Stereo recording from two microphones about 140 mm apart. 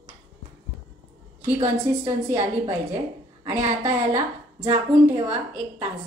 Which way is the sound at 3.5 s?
50° right (ahead or behind).